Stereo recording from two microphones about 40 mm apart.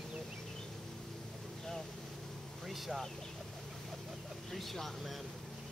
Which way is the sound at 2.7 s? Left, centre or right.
Centre.